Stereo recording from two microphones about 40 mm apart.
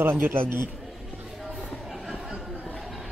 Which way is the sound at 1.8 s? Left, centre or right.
Centre.